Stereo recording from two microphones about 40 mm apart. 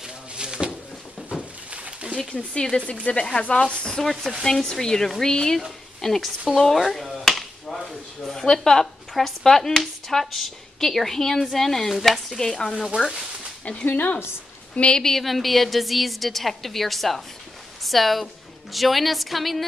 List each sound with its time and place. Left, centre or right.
0.4 s a sound: centre
1.7 s a sound: right
2.1 s speech: centre
3.9 s a woman's voice: centre
6.8 s finger snapping: centre
8.2 s a woman's voice: centre
12.4 s speech: centre
13.8 s speech: left
15.0 s a woman's voice: centre